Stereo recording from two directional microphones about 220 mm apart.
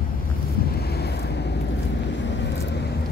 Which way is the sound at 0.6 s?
45° left (ahead or behind).